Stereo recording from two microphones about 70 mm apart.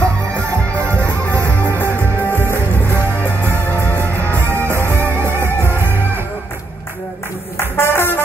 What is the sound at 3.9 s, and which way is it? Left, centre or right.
Music, right.